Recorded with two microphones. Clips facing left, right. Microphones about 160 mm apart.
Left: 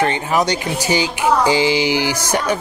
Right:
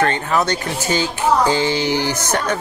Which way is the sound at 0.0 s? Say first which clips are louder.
Left 1 dB; 15° left (ahead or behind).